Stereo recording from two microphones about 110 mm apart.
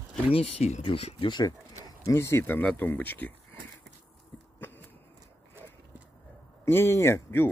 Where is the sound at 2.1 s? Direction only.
25° left (ahead or behind).